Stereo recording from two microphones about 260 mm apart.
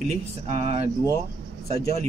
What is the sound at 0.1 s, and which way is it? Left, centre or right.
Speech, right.